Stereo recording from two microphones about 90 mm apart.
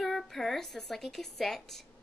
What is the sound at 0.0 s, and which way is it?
Speech, centre (ahead or behind).